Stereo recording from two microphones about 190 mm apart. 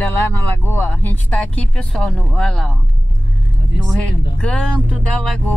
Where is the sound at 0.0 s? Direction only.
10° left (ahead or behind).